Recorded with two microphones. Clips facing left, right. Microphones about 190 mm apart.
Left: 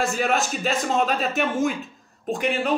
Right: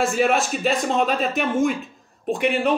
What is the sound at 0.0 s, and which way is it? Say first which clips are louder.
Speech: right 3 dB; centre (ahead or behind).